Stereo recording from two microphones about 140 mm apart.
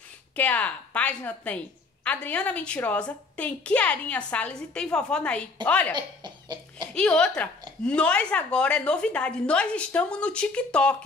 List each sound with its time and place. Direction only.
0.4 s a woman's voice: 10° left (ahead or behind)
5.9 s cough: 30° right (ahead or behind)
6.9 s a woman's voice: 5° left (ahead or behind)